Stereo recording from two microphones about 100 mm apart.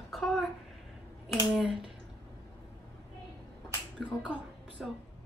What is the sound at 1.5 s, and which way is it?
Speech, 5° right (ahead or behind).